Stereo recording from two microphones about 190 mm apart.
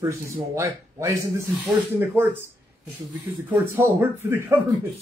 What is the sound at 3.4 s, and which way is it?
Speech, 10° right (ahead or behind).